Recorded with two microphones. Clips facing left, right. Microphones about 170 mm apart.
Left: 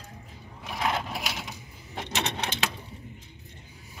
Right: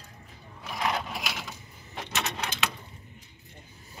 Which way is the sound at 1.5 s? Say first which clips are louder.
Left 2 dB; 25° left (ahead or behind).